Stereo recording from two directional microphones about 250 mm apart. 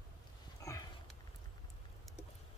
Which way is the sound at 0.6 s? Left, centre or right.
Centre.